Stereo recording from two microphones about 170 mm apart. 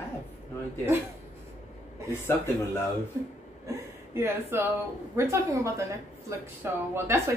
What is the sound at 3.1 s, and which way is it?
A woman's voice, 15° right (ahead or behind).